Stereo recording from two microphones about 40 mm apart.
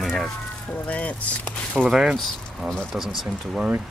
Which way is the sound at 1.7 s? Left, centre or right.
Centre.